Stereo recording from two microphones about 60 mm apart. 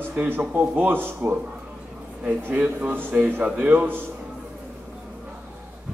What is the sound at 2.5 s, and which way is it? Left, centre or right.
A man's voice, right.